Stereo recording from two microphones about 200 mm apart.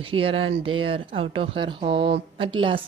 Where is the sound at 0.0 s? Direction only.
25° right (ahead or behind).